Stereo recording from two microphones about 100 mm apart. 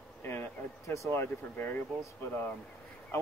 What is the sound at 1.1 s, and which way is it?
Speech, 20° left (ahead or behind).